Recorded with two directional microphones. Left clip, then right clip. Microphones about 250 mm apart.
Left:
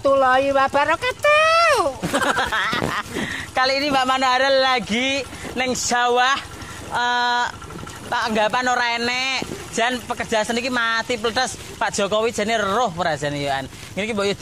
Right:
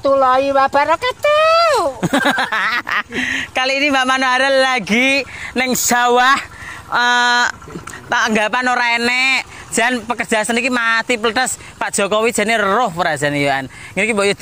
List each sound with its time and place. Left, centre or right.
0.0 s speech: right
2.0 s a man's voice: right